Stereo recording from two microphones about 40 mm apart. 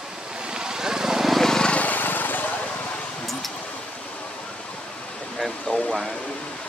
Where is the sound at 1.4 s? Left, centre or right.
Centre.